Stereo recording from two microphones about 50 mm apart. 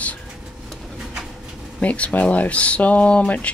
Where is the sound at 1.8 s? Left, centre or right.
Left.